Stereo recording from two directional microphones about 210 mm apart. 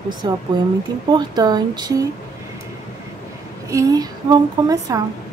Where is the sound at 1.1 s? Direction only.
20° right (ahead or behind).